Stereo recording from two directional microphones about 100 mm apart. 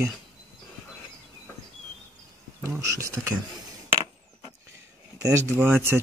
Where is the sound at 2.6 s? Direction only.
30° right (ahead or behind).